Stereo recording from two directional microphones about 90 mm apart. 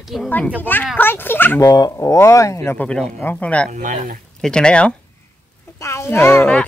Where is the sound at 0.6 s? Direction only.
20° left (ahead or behind).